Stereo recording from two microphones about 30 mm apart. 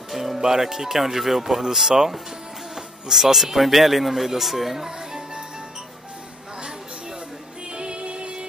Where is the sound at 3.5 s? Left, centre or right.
Centre.